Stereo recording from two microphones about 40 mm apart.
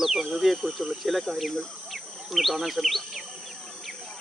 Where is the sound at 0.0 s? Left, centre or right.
Centre.